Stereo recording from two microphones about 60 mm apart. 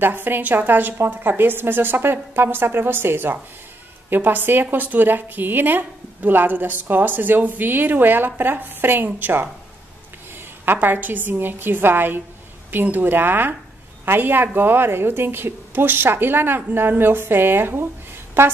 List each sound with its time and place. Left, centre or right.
0.0 s a woman's voice: right
10.6 s a woman's voice: right